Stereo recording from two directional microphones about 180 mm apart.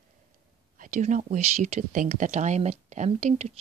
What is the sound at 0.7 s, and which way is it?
Speech, 45° right (ahead or behind).